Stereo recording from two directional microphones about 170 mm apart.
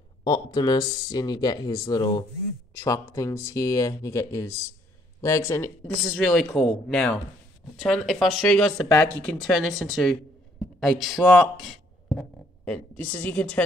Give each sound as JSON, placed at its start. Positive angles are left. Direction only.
{"t": 0.2, "sound": "speech", "side_deg": 25}
{"t": 6.0, "sound": "speech", "side_deg": 0}